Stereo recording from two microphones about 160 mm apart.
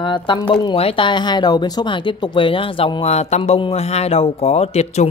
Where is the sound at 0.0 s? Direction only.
30° left (ahead or behind).